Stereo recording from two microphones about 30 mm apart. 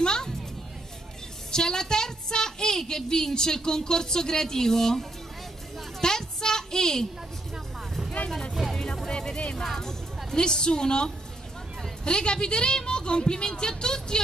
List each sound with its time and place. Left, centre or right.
0.0 s music: left
1.5 s a woman's voice: left
5.9 s a sound: centre
8.7 s music: centre
9.1 s vehicle: left
9.8 s a woman's voice: left